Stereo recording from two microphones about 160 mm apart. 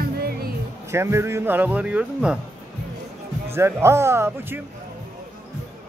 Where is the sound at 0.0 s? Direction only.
75° right (ahead or behind).